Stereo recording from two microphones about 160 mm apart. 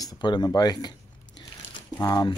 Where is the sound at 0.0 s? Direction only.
25° left (ahead or behind).